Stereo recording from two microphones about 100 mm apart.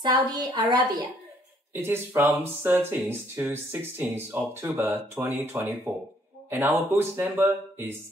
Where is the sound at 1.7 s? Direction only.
20° right (ahead or behind).